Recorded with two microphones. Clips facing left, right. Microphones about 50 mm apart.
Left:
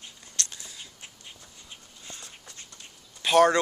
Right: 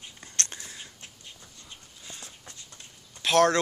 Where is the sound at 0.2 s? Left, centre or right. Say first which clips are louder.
Right 2 dB; right.